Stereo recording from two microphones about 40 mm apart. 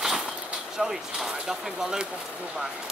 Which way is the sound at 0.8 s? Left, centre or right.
Centre.